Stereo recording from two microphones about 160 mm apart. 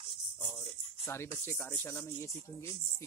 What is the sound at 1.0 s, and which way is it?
Speech, 15° left (ahead or behind).